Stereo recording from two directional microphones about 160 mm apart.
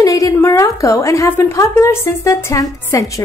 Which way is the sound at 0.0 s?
20° left (ahead or behind).